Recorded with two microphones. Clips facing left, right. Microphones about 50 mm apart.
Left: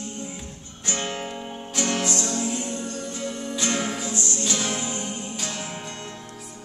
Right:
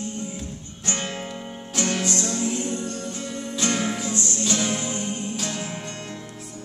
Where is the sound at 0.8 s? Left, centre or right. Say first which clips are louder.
Even; centre.